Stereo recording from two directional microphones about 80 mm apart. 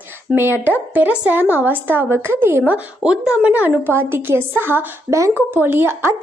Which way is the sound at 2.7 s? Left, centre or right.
Centre.